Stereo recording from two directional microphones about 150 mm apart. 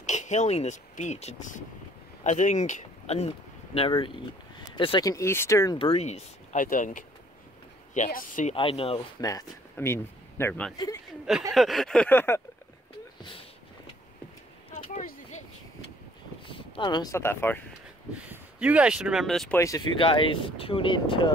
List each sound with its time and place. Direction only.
0.0 s speech: 50° left (ahead or behind); by 5.1 s 35° left (ahead or behind)
5.1 s speech: 15° left (ahead or behind)
5.8 s speech: 40° left (ahead or behind); by 8.5 s 60° left (ahead or behind)
8.5 s speech: 40° left (ahead or behind)
9.2 s speech: 20° left (ahead or behind)
11.5 s a sound: centre (ahead or behind)
13.2 s a sound: 35° left (ahead or behind)
15.0 s a sound: 55° left (ahead or behind)
16.4 s speech: 35° left (ahead or behind); by 17.6 s 15° left (ahead or behind)
18.1 s speech: 10° right (ahead or behind)
19.5 s speech: 20° left (ahead or behind)
20.0 s speech: 35° left (ahead or behind)